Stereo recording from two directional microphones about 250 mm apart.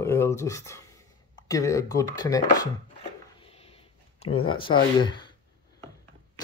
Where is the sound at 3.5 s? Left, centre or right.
Left.